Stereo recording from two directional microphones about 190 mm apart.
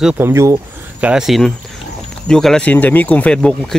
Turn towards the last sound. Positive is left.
turn(degrees=5)  # may be behind; listen again after turning